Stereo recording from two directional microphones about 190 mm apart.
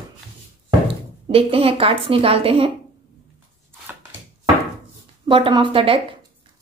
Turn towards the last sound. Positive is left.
turn(degrees=-30)  # may be behind; listen again after turning